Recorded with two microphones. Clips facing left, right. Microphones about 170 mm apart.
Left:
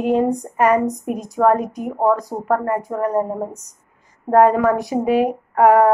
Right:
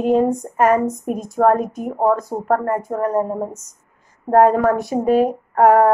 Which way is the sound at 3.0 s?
10° left (ahead or behind).